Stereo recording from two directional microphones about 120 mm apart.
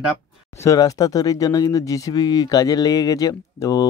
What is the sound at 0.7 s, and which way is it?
Speech, 30° left (ahead or behind).